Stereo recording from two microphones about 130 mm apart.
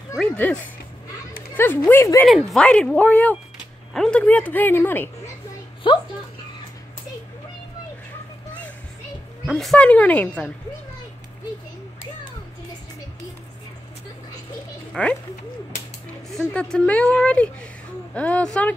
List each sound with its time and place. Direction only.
0.2 s speech: 10° left (ahead or behind)
2.2 s a woman's voice: centre (ahead or behind)
5.9 s a woman's voice: 40° left (ahead or behind)
9.5 s speech: centre (ahead or behind)
15.0 s speech: 5° left (ahead or behind)
16.3 s speech: centre (ahead or behind)